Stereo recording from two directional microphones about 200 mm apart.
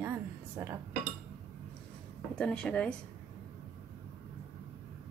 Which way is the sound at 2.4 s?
5° left (ahead or behind).